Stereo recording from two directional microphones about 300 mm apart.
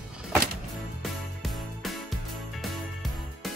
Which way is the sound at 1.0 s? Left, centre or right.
Centre.